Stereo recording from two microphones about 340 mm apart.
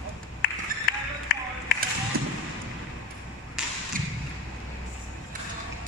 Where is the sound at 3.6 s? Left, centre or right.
Centre.